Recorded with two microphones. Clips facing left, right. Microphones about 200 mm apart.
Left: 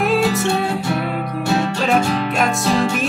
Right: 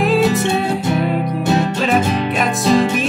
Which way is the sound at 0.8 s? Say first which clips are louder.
Right 4 dB; 20° right (ahead or behind).